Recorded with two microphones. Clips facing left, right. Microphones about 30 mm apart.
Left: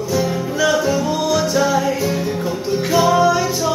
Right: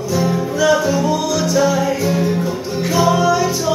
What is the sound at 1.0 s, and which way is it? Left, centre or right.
Music, centre.